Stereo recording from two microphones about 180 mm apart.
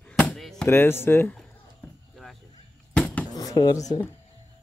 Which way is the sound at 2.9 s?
5° left (ahead or behind).